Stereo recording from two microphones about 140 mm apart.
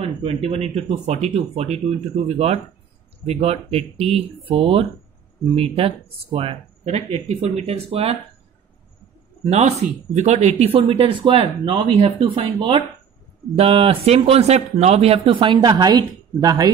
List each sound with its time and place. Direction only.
0.0 s speech: 45° right (ahead or behind)
9.4 s speech: 50° right (ahead or behind); by 16.7 s 30° right (ahead or behind)